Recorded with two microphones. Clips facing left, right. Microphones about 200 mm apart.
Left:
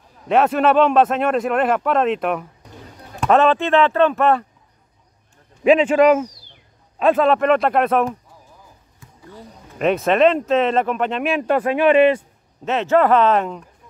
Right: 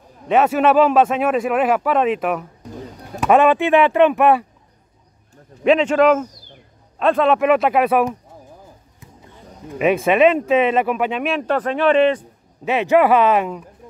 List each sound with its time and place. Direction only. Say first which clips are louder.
0.3 s speech: right 1 dB; centre (ahead or behind)
5.6 s speech: left 1 dB; 5° left (ahead or behind)
9.0 s a sound: right 3 dB; 20° right (ahead or behind)
9.8 s speech: right 1 dB; 10° right (ahead or behind)
11.4 s a man's voice: left 2 dB; 10° left (ahead or behind)
12.6 s speech: right 1 dB; 10° right (ahead or behind)